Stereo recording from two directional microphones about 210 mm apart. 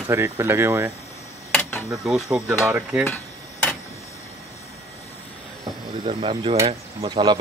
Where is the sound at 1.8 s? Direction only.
5° right (ahead or behind).